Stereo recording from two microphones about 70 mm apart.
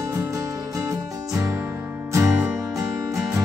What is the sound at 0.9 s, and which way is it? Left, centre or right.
Music, right.